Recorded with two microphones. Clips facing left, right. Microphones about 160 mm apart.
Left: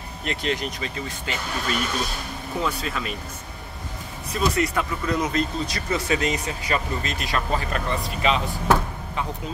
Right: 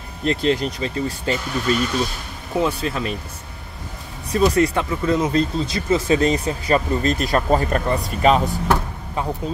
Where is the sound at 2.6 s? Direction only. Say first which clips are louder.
Right 6 dB; 30° right (ahead or behind).